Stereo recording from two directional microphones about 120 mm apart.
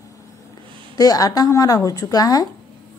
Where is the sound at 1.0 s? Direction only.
30° left (ahead or behind).